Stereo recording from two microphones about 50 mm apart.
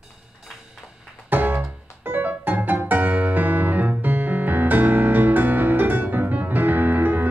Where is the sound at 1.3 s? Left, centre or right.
Right.